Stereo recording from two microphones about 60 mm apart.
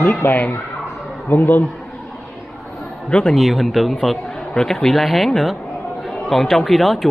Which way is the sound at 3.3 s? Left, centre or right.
Centre.